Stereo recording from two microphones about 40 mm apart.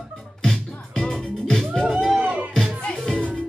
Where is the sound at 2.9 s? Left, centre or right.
Centre.